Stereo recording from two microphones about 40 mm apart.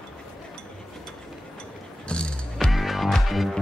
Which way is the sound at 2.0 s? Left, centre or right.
Left.